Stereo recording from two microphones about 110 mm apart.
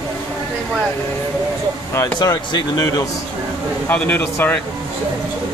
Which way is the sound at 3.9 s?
15° left (ahead or behind).